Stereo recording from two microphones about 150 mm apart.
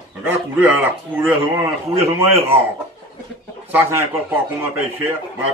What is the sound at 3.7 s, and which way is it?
Speech, 15° right (ahead or behind).